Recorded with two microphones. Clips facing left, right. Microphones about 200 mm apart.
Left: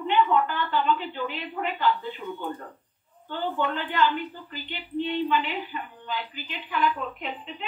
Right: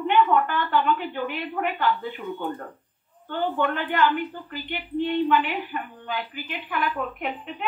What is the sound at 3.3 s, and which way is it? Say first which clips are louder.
A woman's voice: right 3 dB; 50° right (ahead or behind).